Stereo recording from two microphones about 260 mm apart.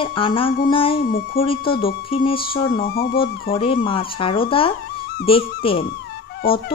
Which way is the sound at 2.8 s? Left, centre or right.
Left.